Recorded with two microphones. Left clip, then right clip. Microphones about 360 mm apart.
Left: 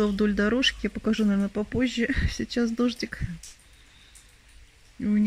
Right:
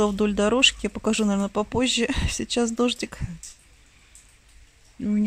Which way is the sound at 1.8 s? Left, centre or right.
Centre.